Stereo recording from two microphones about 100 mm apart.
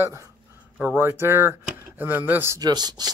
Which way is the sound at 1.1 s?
25° right (ahead or behind).